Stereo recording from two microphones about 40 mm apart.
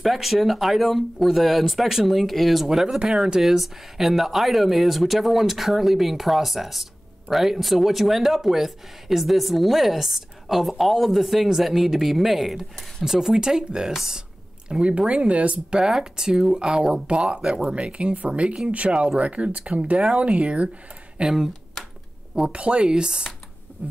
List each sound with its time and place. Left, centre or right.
0.0 s speech: centre; by 15.8 s right
15.8 s speech: centre
21.2 s speech: centre
22.3 s speech: right